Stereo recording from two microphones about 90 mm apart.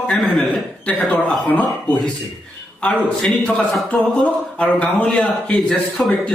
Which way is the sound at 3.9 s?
5° left (ahead or behind).